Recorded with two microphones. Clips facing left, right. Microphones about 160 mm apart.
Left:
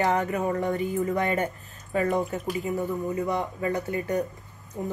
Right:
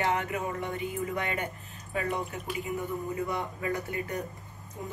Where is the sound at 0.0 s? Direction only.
40° left (ahead or behind).